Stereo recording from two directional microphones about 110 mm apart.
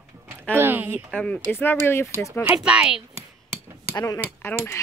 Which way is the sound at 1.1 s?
10° left (ahead or behind).